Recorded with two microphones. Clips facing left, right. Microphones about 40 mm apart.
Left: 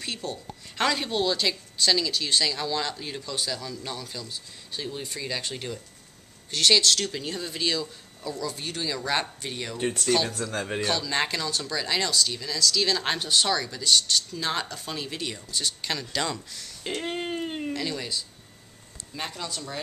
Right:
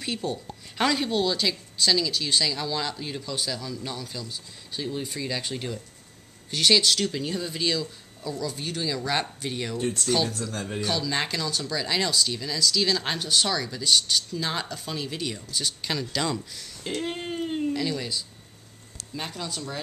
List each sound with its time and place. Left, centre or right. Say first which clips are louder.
0.0 s speech: right 3 dB; centre
9.8 s speech: left 2 dB; left
10.0 s speech: left 1 dB; centre
10.5 s a man's voice: left 3 dB; left
10.8 s speech: even; centre
16.8 s a sound: even; centre
17.7 s speech: right 2 dB; centre